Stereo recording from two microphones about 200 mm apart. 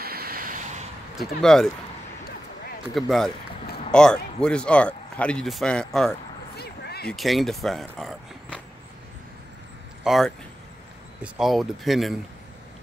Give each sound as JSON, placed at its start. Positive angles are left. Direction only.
{"t": 0.0, "sound": "vehicle", "side_deg": -50}
{"t": 1.1, "sound": "speech", "side_deg": 0}
{"t": 2.9, "sound": "speech", "side_deg": 0}
{"t": 6.5, "sound": "a sound", "side_deg": 55}
{"t": 7.1, "sound": "speech", "side_deg": 0}
{"t": 10.0, "sound": "speech", "side_deg": 0}
{"t": 11.3, "sound": "speech", "side_deg": 0}